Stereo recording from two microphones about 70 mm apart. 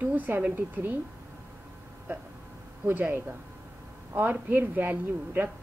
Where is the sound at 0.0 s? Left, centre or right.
Right.